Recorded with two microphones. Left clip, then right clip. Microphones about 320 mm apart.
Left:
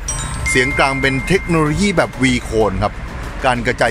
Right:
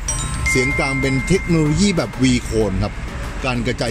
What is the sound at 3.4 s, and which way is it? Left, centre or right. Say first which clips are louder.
Speech: left 7 dB; centre.